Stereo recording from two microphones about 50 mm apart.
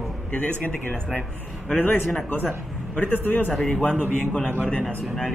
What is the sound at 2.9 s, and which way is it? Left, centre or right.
Speech, left.